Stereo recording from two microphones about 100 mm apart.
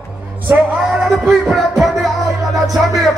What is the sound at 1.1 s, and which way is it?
Music, centre (ahead or behind).